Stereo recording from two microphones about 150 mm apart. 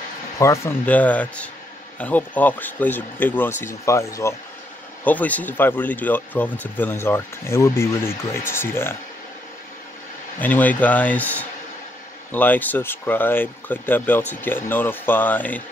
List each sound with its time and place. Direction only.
0.4 s speech: 20° left (ahead or behind)
10.4 s speech: 10° left (ahead or behind)